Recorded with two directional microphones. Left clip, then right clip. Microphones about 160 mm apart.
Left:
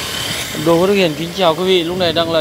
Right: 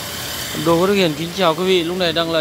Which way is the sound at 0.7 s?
10° right (ahead or behind).